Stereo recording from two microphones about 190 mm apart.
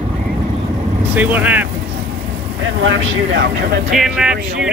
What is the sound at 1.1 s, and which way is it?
Speech, 10° right (ahead or behind).